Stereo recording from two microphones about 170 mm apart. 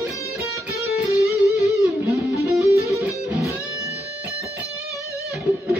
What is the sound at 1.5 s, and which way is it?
Music, 20° left (ahead or behind).